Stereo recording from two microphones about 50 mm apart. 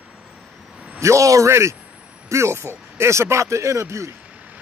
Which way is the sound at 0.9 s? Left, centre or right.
Right.